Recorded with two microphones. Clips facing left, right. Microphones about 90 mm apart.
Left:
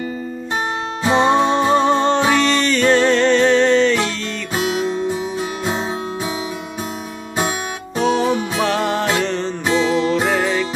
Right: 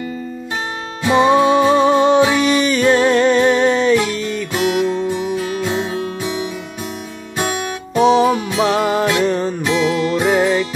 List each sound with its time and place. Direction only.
1.0 s music: 25° left (ahead or behind)
1.4 s music: 10° right (ahead or behind)
5.4 s music: 25° left (ahead or behind)
8.5 s music: 10° right (ahead or behind)
9.7 s music: 30° left (ahead or behind)
10.2 s music: 10° right (ahead or behind)